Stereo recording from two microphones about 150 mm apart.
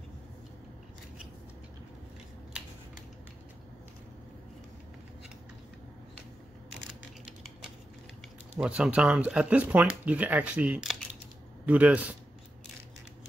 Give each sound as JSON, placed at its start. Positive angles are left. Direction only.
{"t": 8.5, "sound": "speech", "side_deg": -5}